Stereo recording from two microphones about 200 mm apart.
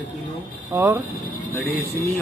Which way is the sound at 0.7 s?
10° right (ahead or behind).